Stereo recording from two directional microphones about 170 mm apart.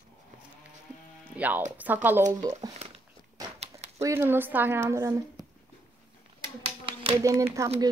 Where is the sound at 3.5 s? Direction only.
40° right (ahead or behind).